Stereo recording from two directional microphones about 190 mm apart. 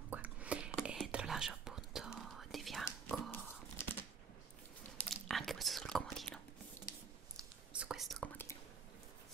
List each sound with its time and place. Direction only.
0.1 s whispering: 5° right (ahead or behind)
3.3 s a sound: 10° left (ahead or behind)
5.0 s whispering: centre (ahead or behind)
7.7 s whispering: 5° right (ahead or behind)